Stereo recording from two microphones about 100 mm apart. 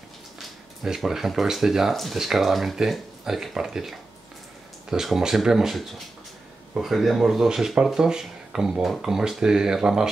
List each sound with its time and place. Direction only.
0.4 s speech: 5° right (ahead or behind)